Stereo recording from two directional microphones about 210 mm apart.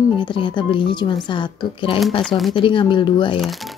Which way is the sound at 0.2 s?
25° left (ahead or behind).